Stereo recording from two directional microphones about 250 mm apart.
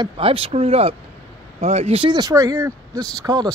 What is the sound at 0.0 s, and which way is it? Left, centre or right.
Speech, right.